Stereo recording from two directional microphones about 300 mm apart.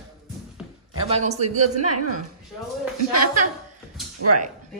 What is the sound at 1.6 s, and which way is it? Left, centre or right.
Speech, right.